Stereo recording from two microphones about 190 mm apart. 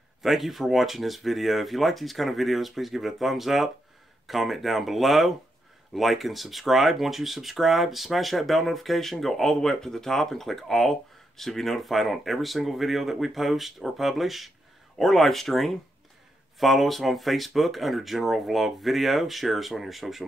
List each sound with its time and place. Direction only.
0.2 s speech: centre (ahead or behind)